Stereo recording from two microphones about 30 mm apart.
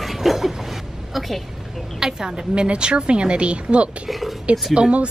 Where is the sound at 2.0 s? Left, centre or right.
Right.